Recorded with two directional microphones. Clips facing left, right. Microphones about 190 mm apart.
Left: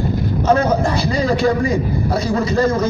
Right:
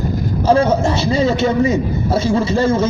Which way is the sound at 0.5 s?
30° right (ahead or behind).